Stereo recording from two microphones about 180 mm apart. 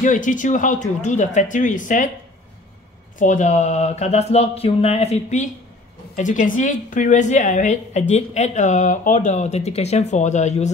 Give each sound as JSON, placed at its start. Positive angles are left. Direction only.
{"t": 0.0, "sound": "speech", "side_deg": 45}
{"t": 3.2, "sound": "speech", "side_deg": 45}